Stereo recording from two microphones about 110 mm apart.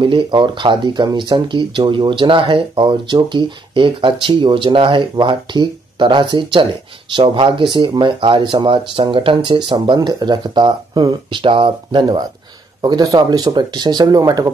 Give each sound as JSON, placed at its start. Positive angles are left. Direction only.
{"t": 0.0, "sound": "speech", "side_deg": -50}
{"t": 12.8, "sound": "speech", "side_deg": -35}